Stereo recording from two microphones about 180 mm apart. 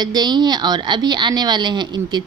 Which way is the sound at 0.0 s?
25° right (ahead or behind).